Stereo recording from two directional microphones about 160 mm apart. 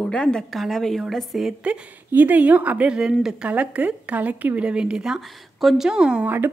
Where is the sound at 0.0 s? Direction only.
5° left (ahead or behind).